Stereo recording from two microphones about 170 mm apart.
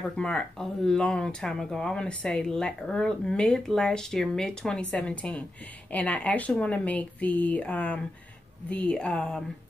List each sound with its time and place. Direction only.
0.1 s speech: 5° left (ahead or behind)